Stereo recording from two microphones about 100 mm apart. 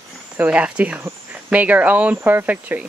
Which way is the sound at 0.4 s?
15° right (ahead or behind).